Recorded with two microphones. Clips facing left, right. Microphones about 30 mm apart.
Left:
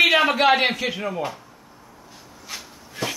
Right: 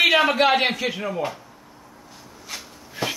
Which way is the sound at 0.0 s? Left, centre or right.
Centre.